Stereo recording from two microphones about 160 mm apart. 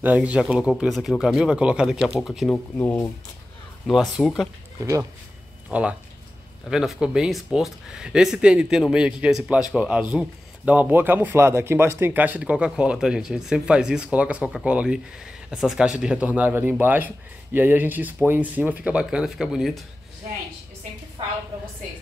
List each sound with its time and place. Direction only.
0.0 s speech: 10° right (ahead or behind)
2.5 s speech: 15° left (ahead or behind)
3.8 s speech: centre (ahead or behind)
5.7 s speech: 10° right (ahead or behind)